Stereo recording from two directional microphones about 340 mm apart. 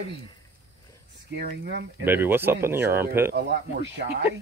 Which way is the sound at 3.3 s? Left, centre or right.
Right.